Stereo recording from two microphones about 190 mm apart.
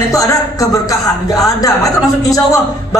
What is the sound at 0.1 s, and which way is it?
Speech, 20° left (ahead or behind).